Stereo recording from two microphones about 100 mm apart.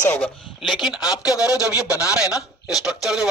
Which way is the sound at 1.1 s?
35° left (ahead or behind).